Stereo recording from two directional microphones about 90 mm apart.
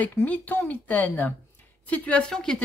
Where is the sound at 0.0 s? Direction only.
20° left (ahead or behind).